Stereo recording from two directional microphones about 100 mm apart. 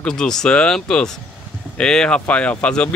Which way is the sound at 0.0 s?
5° left (ahead or behind).